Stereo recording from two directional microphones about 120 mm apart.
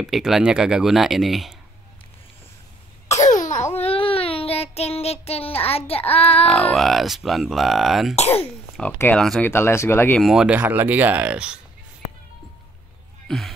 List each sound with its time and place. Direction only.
0.0 s speech: 5° right (ahead or behind)
3.3 s cough: 90° left
3.7 s child singing: 55° left (ahead or behind)
6.4 s speech: 5° left (ahead or behind)
9.4 s speech: 20° left (ahead or behind)
10.1 s speech: 5° right (ahead or behind)
13.3 s speech: 5° left (ahead or behind)